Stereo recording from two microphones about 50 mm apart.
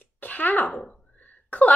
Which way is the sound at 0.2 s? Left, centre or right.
Left.